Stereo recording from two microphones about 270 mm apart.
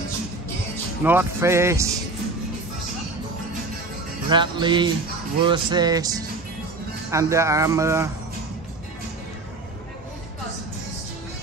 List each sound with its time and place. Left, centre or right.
1.0 s speech: centre
4.3 s speech: centre